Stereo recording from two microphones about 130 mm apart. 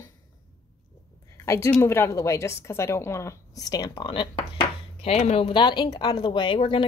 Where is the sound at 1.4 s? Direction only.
25° left (ahead or behind).